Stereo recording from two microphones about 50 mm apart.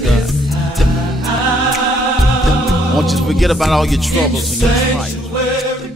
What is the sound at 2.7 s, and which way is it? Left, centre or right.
Music, centre.